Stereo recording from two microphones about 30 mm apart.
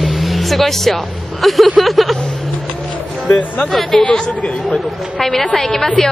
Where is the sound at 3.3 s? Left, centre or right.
Left.